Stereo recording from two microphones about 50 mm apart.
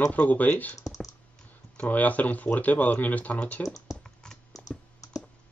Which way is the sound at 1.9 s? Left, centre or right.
Left.